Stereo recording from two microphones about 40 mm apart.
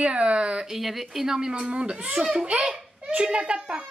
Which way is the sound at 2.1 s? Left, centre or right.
Centre.